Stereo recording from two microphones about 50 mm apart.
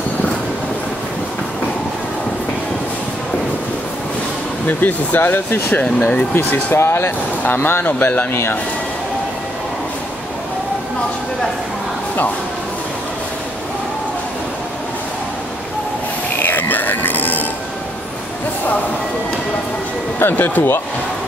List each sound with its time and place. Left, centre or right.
4.6 s speech: left
5.7 s speech: left
6.7 s speech: left
16.3 s music: left
20.2 s speech: left